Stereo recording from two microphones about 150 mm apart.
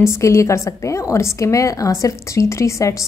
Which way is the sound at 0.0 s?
20° left (ahead or behind).